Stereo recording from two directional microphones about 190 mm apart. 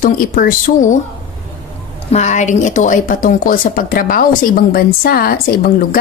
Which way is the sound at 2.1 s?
40° left (ahead or behind).